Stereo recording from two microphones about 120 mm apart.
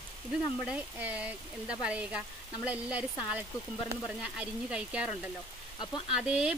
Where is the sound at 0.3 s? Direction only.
10° right (ahead or behind).